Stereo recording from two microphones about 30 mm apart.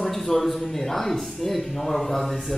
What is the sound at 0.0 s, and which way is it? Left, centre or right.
Speech, centre.